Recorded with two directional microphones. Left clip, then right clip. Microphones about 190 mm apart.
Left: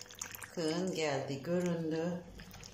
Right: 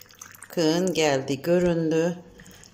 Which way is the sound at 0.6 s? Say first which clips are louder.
Right 13 dB; 55° right (ahead or behind).